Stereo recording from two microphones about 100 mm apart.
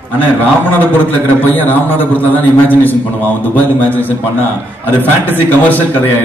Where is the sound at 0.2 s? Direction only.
20° left (ahead or behind).